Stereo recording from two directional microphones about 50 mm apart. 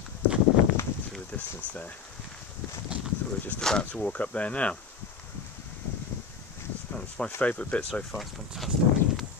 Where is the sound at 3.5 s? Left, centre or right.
Right.